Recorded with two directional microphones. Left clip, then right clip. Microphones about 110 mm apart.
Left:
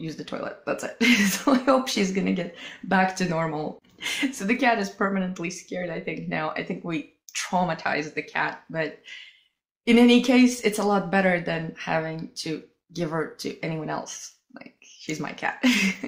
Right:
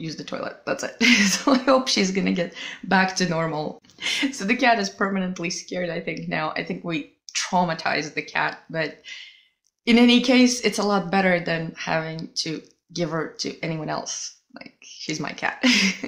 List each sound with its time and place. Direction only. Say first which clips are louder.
0.0 s speech: right 2 dB; 15° right (ahead or behind)